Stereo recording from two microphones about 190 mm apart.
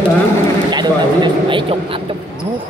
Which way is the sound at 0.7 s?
25° right (ahead or behind).